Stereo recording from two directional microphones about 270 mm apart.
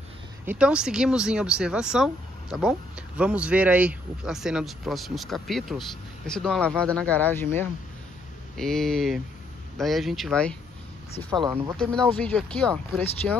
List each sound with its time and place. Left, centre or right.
0.5 s speech: centre
3.2 s speech: centre
11.2 s speech: centre
11.7 s speech: centre